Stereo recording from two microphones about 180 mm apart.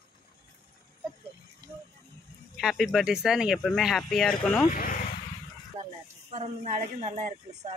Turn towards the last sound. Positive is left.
turn(degrees=-40)  # may be behind; listen again after turning